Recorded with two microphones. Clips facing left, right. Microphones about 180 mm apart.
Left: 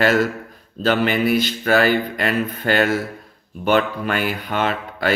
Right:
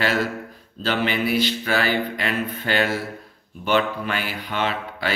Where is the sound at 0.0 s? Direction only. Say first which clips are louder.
Left 5 dB; 45° left (ahead or behind).